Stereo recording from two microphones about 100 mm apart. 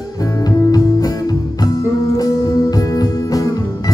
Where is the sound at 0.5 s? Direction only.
35° left (ahead or behind).